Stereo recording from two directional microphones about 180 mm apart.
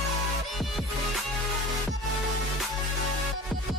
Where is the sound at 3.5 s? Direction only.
Centre (ahead or behind).